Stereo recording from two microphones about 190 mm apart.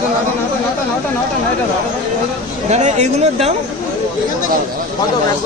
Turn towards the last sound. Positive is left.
turn(degrees=-35)  # may be behind; listen again after turning